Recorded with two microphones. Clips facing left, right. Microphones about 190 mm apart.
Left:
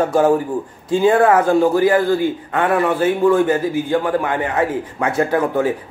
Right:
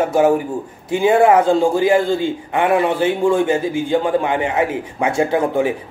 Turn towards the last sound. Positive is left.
turn(degrees=-20)  # may be behind; listen again after turning